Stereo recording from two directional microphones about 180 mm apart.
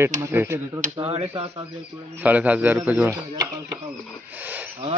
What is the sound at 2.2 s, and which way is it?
Speech, 10° right (ahead or behind).